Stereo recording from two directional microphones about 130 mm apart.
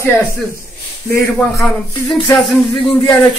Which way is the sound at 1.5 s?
Centre (ahead or behind).